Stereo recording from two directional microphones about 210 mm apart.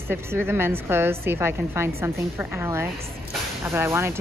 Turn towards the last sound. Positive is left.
turn(degrees=-10)  # may be behind; listen again after turning